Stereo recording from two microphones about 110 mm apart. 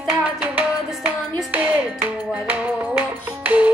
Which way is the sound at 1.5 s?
15° right (ahead or behind).